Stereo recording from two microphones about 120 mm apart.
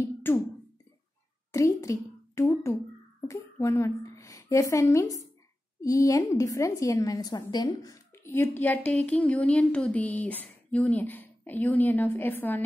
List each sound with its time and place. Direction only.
0.0 s beatboxing: 20° left (ahead or behind)
1.5 s a child's voice: 25° left (ahead or behind)